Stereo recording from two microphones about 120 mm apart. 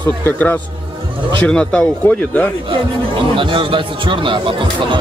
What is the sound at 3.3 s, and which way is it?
A man's voice, 45° right (ahead or behind).